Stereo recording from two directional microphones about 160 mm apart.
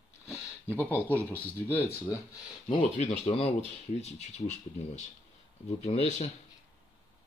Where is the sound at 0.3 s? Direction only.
10° left (ahead or behind).